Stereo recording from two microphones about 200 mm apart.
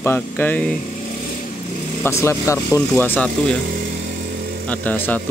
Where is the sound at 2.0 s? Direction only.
15° left (ahead or behind).